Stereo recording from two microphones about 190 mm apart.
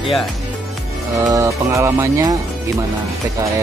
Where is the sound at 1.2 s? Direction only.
15° right (ahead or behind).